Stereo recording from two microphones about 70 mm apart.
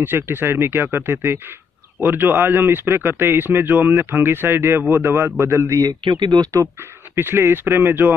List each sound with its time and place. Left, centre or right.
0.1 s speech: right
5.8 s speech: right
7.2 s speech: right